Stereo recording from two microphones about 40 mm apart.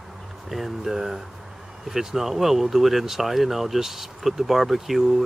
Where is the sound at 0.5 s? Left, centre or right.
Centre.